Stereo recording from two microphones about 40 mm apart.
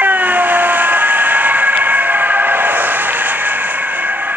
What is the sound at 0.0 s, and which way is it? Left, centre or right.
Vehicle, right.